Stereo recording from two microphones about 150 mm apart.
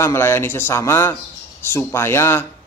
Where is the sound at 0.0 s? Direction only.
15° left (ahead or behind).